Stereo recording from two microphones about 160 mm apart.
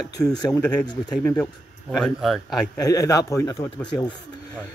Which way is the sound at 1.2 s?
5° left (ahead or behind).